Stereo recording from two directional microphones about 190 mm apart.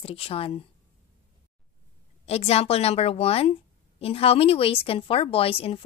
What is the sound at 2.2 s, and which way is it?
A woman's voice, 35° left (ahead or behind).